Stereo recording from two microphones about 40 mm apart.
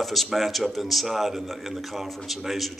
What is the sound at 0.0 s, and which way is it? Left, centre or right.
A man's voice, centre.